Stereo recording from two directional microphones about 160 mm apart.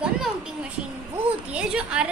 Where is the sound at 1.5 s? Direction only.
5° right (ahead or behind).